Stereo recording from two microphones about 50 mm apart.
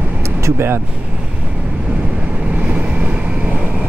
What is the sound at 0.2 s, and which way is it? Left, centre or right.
Vehicle, right.